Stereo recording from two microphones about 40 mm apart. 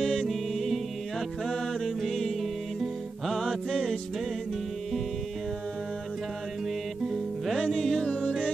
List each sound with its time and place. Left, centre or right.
0.0 s music: centre
3.7 s music: centre
7.7 s music: centre
8.0 s music: left